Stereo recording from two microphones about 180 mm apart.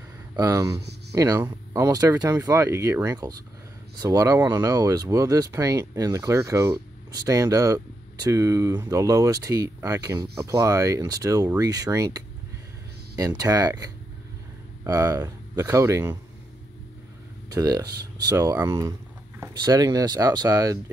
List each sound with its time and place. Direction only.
0.4 s speech: 20° right (ahead or behind)
13.4 s speech: 20° right (ahead or behind)
17.5 s speech: 20° right (ahead or behind)